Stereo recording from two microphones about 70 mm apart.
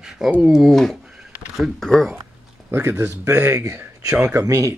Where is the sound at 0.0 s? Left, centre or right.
Centre.